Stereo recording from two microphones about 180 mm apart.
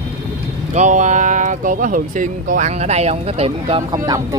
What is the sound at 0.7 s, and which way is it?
Speech, 40° right (ahead or behind).